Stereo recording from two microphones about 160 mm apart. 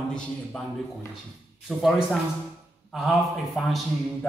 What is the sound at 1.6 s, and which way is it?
A man's voice, centre (ahead or behind).